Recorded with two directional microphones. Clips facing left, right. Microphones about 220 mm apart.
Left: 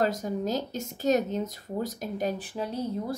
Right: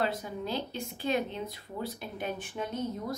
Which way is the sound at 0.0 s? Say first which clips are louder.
Left 5 dB; 40° left (ahead or behind).